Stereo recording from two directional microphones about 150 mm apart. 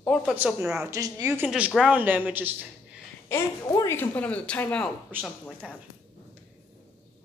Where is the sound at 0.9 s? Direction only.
20° right (ahead or behind).